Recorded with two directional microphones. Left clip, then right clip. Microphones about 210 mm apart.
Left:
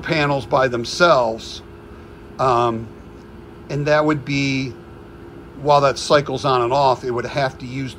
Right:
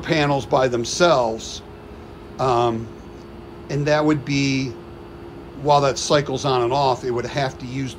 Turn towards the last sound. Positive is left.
turn(degrees=-15)  # may be behind; listen again after turning